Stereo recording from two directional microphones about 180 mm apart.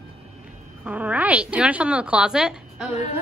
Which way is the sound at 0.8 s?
10° right (ahead or behind).